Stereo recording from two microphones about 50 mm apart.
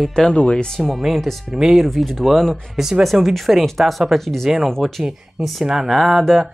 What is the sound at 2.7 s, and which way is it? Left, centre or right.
Speech, centre.